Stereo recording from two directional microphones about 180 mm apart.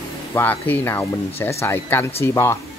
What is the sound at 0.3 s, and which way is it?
Speech, 10° left (ahead or behind).